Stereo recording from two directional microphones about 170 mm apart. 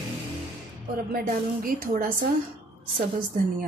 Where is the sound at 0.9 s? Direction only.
55° right (ahead or behind).